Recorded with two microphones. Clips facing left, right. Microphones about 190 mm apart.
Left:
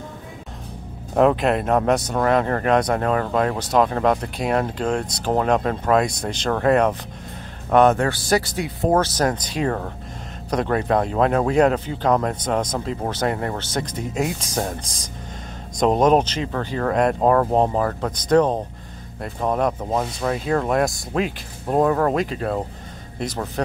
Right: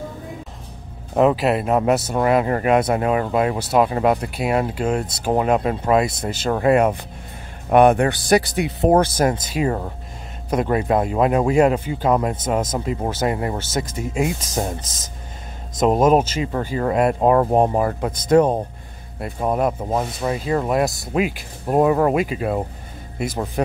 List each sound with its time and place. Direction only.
1.1 s speech: 5° right (ahead or behind)
15.8 s speech: 5° right (ahead or behind)